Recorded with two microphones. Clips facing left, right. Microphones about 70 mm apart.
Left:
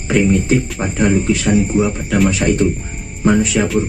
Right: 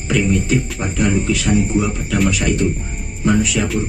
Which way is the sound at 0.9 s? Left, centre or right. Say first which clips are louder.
Left 3 dB; left.